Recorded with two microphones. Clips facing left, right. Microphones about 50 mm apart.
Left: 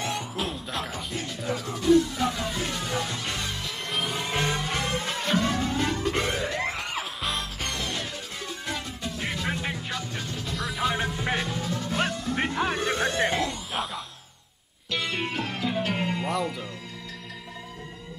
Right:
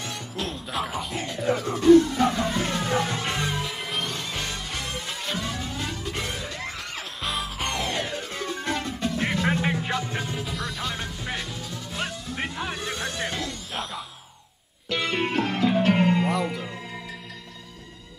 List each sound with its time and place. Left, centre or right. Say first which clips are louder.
0.0 s music: left 2 dB; centre
1.4 s speech: right 7 dB; centre
1.9 s music: right 5 dB; right; by 6.2 s left
6.2 s music: left 5 dB; centre
7.2 s music: right 6 dB; centre
9.2 s music: right 5 dB; right; by 13.8 s centre
14.9 s music: right 4 dB; right